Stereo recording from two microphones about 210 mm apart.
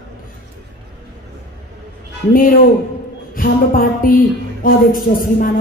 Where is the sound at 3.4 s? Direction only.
40° left (ahead or behind).